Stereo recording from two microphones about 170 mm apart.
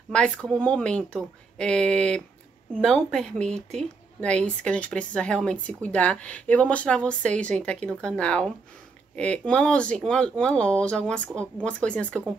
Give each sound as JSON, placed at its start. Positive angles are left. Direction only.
{"t": 0.1, "sound": "speech", "side_deg": 5}